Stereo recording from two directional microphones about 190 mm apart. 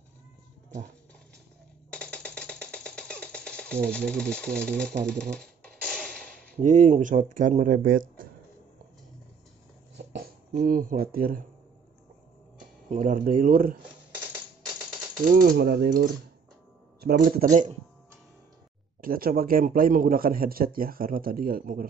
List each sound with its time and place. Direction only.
1.9 s a sound: 5° left (ahead or behind)
3.9 s speech: 5° left (ahead or behind)
5.2 s a sound: 5° left (ahead or behind)
6.5 s a man's voice: 40° right (ahead or behind)
10.2 s speech: 55° right (ahead or behind)
12.9 s a man's voice: 45° right (ahead or behind)
13.8 s typing: 10° right (ahead or behind)
15.2 s a man's voice: 50° right (ahead or behind)
18.9 s a man's voice: 50° right (ahead or behind)